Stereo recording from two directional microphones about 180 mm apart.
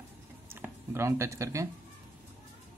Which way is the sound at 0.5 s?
15° right (ahead or behind).